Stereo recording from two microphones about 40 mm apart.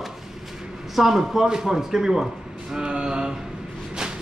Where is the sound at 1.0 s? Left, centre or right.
Centre.